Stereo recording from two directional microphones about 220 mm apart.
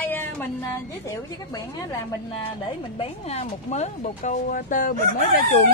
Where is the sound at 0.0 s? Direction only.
10° left (ahead or behind).